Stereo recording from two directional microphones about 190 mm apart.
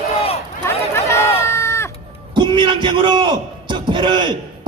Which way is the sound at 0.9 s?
15° left (ahead or behind).